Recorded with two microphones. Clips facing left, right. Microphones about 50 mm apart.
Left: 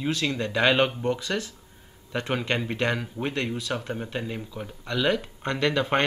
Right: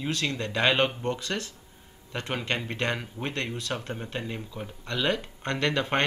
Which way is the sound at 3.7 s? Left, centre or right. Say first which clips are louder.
Left 2 dB; centre.